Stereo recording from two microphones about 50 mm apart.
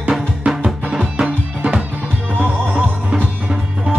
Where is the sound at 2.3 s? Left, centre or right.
Right.